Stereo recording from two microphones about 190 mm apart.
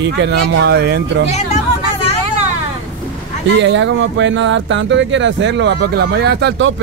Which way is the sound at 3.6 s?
75° right (ahead or behind).